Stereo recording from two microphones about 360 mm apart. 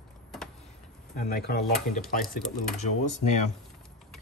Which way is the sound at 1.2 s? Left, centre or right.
Left.